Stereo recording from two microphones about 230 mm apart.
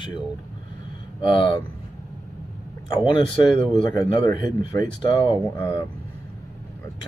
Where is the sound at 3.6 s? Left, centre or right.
Centre.